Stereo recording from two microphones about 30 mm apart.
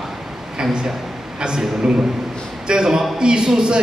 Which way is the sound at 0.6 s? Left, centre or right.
Right.